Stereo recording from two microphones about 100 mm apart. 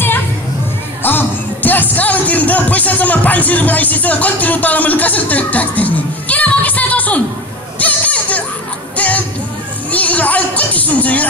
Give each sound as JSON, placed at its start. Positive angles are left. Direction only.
{"t": 1.0, "sound": "music", "side_deg": 20}
{"t": 7.8, "sound": "children playing", "side_deg": 15}
{"t": 8.9, "sound": "music", "side_deg": 15}